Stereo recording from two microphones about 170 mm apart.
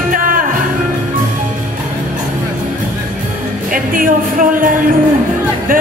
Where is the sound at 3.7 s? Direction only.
55° right (ahead or behind).